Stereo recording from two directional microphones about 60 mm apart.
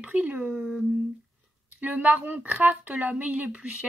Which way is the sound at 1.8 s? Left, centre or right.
Right.